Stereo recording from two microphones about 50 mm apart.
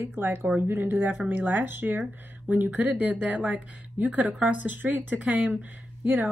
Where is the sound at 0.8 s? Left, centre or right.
Right.